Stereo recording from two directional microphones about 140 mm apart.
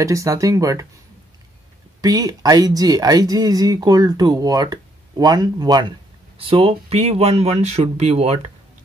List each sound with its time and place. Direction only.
0.0 s speech: 20° right (ahead or behind)
2.0 s speech: 25° right (ahead or behind); by 8.4 s 50° right (ahead or behind)